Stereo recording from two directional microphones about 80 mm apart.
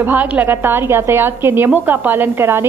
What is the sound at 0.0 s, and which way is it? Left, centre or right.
A woman's voice, right.